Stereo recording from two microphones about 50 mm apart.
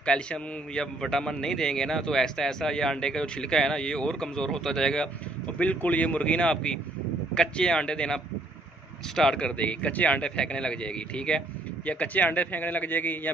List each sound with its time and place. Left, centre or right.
0.0 s a man's voice: centre
5.6 s a man's voice: left
9.6 s a man's voice: left